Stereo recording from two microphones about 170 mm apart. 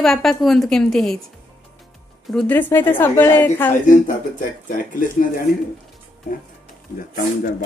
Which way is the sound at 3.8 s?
50° left (ahead or behind).